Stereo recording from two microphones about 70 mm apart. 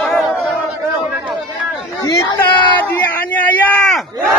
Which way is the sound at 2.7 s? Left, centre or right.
Left.